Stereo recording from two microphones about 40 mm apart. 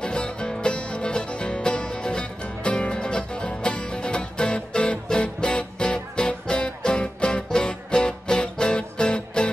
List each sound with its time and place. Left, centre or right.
0.0 s music: left